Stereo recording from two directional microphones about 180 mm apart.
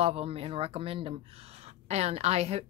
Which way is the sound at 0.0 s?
35° right (ahead or behind).